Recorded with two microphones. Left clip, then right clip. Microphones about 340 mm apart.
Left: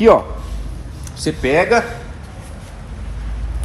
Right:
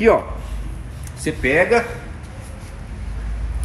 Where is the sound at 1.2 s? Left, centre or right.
Centre.